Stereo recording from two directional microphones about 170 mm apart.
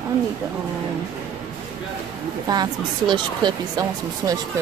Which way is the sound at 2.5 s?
25° right (ahead or behind).